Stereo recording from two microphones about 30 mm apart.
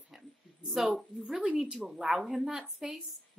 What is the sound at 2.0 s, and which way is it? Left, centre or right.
Speech, centre.